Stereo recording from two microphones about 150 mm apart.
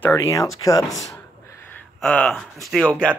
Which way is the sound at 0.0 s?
20° left (ahead or behind).